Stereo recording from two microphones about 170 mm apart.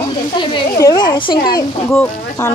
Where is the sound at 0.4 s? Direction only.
25° left (ahead or behind).